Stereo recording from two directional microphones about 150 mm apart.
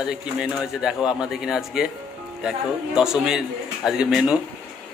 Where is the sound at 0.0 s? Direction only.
5° right (ahead or behind).